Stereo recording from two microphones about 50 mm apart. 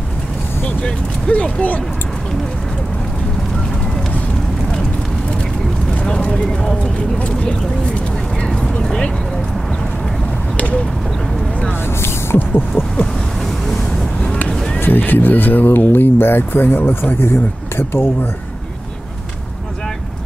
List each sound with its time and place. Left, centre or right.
0.7 s speech: left
5.9 s pigeon: centre
6.3 s speech: centre
8.4 s vehicle: centre
8.8 s a sound: centre
12.4 s speech: left
14.2 s vehicle: left
14.5 s a sound: centre
14.8 s speech: left